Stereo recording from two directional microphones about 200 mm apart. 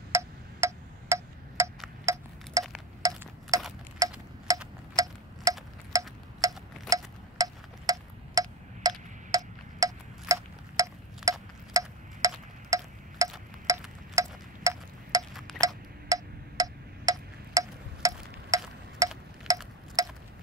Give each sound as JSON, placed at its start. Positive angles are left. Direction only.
{"t": 0.1, "sound": "tick-tock", "side_deg": -15}
{"t": 2.1, "sound": "wind chime", "side_deg": -15}
{"t": 3.0, "sound": "tick-tock", "side_deg": -15}
{"t": 4.0, "sound": "wind chime", "side_deg": -15}
{"t": 4.5, "sound": "tick-tock", "side_deg": -15}
{"t": 13.7, "sound": "wind chime", "side_deg": -15}
{"t": 15.3, "sound": "tick-tock", "side_deg": 0}
{"t": 15.6, "sound": "tick-tock", "side_deg": -15}
{"t": 18.9, "sound": "wind chime", "side_deg": -15}
{"t": 20.0, "sound": "a sound", "side_deg": -15}